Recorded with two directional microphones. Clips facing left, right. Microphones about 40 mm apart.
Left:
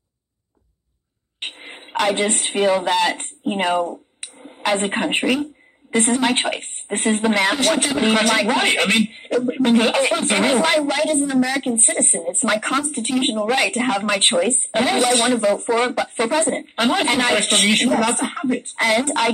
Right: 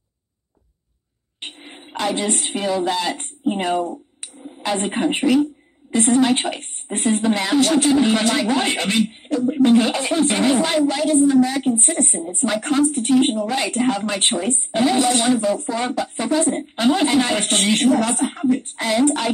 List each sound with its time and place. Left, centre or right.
1.4 s a sound: left
2.5 s a woman's voice: left
17.9 s a woman's voice: left